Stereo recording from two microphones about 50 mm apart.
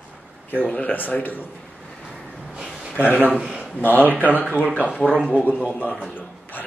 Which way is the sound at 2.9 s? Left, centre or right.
Left.